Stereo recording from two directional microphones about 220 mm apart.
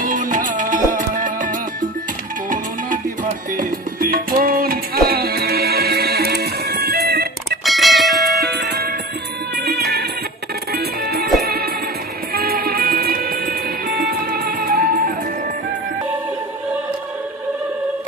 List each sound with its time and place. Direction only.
0.0 s music: 35° right (ahead or behind)
3.5 s music: 40° right (ahead or behind)
7.6 s music: centre (ahead or behind)
8.4 s music: 45° right (ahead or behind)